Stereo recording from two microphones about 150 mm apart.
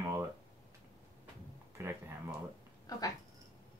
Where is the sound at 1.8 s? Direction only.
15° right (ahead or behind).